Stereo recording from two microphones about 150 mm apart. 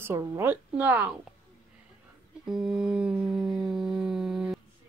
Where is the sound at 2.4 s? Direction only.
5° right (ahead or behind).